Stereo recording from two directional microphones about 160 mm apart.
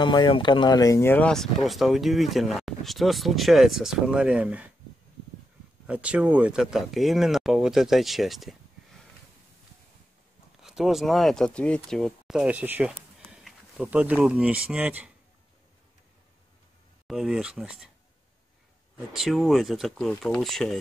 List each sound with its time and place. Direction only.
0.0 s speech: 30° left (ahead or behind); by 4.7 s 10° right (ahead or behind)
5.9 s speech: 5° right (ahead or behind)
10.6 s speech: 5° right (ahead or behind)
17.1 s speech: centre (ahead or behind)
19.1 s speech: centre (ahead or behind)